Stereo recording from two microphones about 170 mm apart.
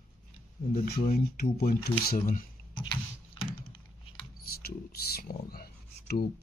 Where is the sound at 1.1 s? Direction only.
60° left (ahead or behind).